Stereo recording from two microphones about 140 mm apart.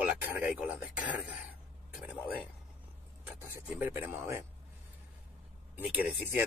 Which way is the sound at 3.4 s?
15° right (ahead or behind).